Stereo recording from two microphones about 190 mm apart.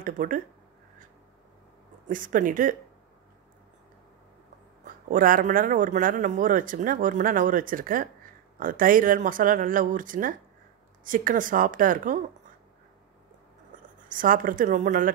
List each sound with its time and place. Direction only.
0.0 s speech: 45° right (ahead or behind)
2.0 s speech: 45° right (ahead or behind)
4.8 s speech: 45° right (ahead or behind)
14.0 s speech: 45° right (ahead or behind)